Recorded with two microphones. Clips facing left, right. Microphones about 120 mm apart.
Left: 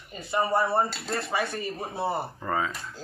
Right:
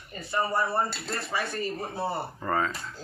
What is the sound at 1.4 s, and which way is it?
Speech, centre (ahead or behind).